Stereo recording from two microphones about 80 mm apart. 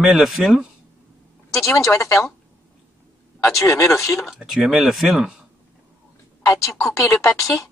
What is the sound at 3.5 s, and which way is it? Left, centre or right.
Speech, left.